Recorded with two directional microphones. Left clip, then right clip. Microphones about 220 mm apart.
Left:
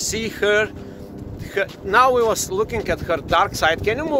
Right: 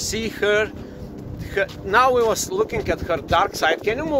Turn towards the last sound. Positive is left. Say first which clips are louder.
# left 1 dB
turn(degrees=20)  # may be behind; listen again after turning